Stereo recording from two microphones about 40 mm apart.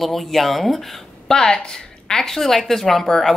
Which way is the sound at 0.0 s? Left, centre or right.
Centre.